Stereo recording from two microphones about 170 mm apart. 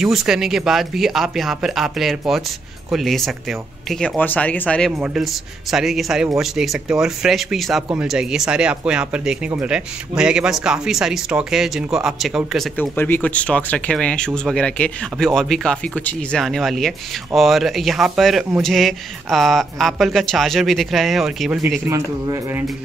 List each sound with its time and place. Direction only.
0.0 s speech: 5° right (ahead or behind)
12.9 s speech: 10° left (ahead or behind)
21.8 s speech: 15° right (ahead or behind)